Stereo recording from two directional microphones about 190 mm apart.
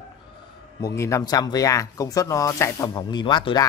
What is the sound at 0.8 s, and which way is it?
Speech, 15° left (ahead or behind).